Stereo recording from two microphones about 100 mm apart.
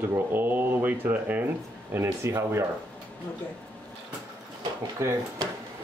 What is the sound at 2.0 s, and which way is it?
Speech, 30° right (ahead or behind).